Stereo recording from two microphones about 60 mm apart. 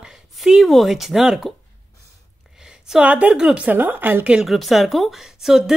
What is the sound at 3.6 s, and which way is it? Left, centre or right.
Speech, right.